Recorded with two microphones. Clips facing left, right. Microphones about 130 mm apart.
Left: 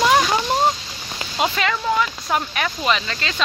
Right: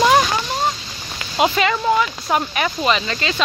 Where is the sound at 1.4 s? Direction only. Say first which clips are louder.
Right 4 dB; 5° right (ahead or behind).